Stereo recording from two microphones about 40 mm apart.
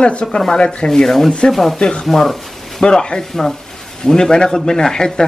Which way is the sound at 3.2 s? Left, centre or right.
Centre.